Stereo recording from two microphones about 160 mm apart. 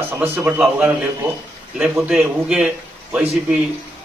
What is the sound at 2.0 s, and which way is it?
A man's voice, 5° right (ahead or behind).